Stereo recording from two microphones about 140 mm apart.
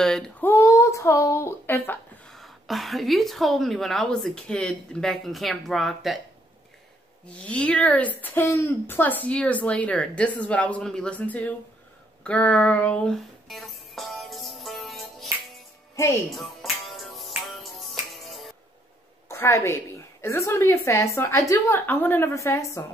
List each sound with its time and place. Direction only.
0.0 s speech: 5° left (ahead or behind)
2.3 s a woman's voice: centre (ahead or behind)
7.2 s a woman's voice: 10° left (ahead or behind)
12.2 s music: 10° left (ahead or behind)
16.3 s music: centre (ahead or behind)
19.2 s a woman's voice: 20° left (ahead or behind)